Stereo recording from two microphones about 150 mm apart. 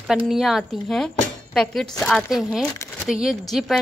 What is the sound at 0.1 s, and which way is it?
Speech, centre (ahead or behind).